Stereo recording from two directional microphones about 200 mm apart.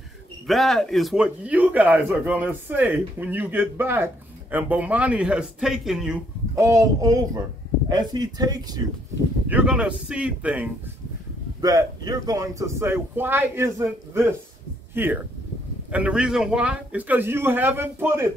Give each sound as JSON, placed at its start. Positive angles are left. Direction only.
{"t": 0.5, "sound": "speech", "side_deg": 0}
{"t": 6.5, "sound": "speech", "side_deg": -15}
{"t": 9.5, "sound": "speech", "side_deg": -5}
{"t": 11.6, "sound": "speech", "side_deg": -20}